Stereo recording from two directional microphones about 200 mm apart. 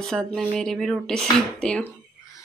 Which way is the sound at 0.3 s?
Centre (ahead or behind).